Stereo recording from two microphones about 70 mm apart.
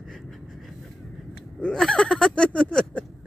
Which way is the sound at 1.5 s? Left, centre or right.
Centre.